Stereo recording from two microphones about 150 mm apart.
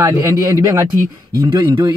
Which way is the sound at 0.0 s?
25° right (ahead or behind).